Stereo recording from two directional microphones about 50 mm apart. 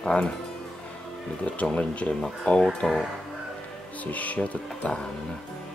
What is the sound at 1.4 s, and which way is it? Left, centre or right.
Speech, left.